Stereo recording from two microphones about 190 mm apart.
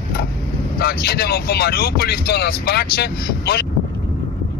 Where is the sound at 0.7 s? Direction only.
55° left (ahead or behind).